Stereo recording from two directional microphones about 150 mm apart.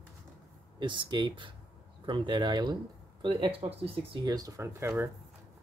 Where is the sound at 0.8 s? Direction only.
30° right (ahead or behind).